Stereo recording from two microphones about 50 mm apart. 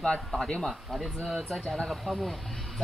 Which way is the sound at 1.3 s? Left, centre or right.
Centre.